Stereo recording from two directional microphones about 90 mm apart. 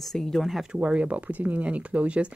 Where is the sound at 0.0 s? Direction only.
5° left (ahead or behind).